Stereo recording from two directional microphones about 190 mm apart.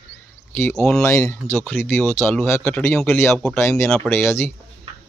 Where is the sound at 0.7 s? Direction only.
5° left (ahead or behind).